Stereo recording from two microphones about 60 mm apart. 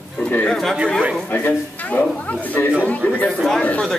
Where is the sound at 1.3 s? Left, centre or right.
Left.